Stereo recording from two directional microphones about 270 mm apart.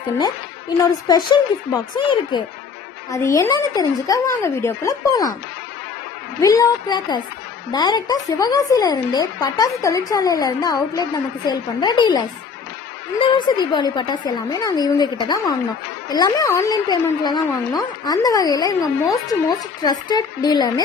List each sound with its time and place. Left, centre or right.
1.0 s speech: centre
6.4 s speech: centre